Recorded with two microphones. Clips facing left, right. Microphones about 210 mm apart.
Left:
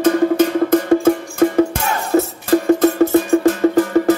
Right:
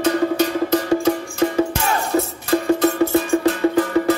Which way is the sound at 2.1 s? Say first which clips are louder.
Left 7 dB; 45° left (ahead or behind).